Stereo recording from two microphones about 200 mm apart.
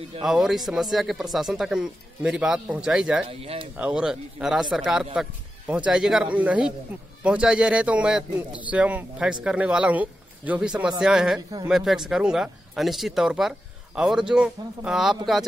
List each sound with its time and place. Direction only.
0.2 s a man's voice: centre (ahead or behind)
3.3 s speech: 30° right (ahead or behind)
3.7 s a man's voice: 5° right (ahead or behind)